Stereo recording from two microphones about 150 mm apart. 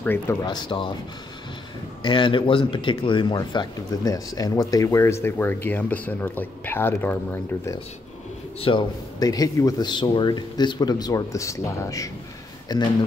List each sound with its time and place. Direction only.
0.0 s speech: 15° left (ahead or behind)
0.5 s speech: 30° left (ahead or behind)
2.0 s speech: 35° left (ahead or behind); by 7.2 s 15° left (ahead or behind)
8.5 s speech: 35° left (ahead or behind)